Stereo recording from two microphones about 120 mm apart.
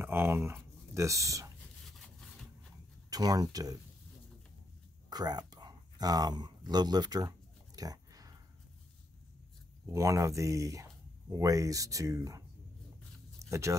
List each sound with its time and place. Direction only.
0.0 s speech: 20° right (ahead or behind)
1.9 s a sound: 5° left (ahead or behind)
3.1 s speech: 30° right (ahead or behind)
5.1 s a sound: 35° right (ahead or behind)
9.8 s speech: 25° right (ahead or behind)
13.5 s speech: 25° right (ahead or behind)